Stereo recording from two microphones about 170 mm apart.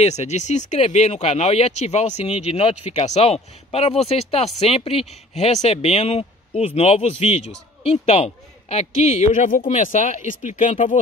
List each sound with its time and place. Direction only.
0.0 s a woman's voice: 40° left (ahead or behind)